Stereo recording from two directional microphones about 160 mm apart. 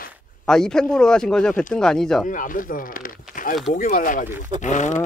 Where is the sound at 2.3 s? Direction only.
60° left (ahead or behind).